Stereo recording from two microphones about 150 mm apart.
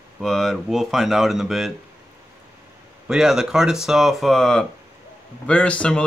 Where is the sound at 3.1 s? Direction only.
5° right (ahead or behind).